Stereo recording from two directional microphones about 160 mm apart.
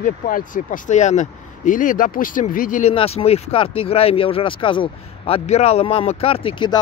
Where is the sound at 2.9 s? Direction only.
40° left (ahead or behind).